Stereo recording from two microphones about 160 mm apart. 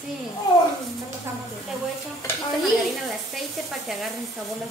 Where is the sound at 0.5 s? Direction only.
25° left (ahead or behind).